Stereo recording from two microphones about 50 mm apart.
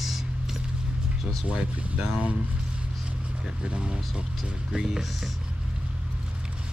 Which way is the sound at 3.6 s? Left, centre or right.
Centre.